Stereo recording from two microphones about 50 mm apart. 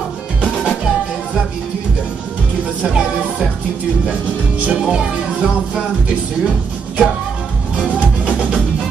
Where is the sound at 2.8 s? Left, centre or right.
Centre.